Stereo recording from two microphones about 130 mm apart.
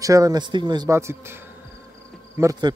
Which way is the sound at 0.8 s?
20° right (ahead or behind).